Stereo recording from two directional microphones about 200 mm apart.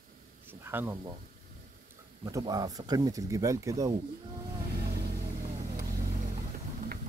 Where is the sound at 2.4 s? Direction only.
20° right (ahead or behind).